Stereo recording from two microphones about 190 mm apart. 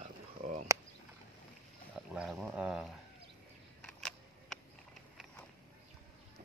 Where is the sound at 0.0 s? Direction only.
40° right (ahead or behind).